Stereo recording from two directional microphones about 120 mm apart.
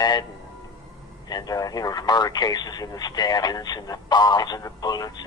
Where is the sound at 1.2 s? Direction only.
35° left (ahead or behind).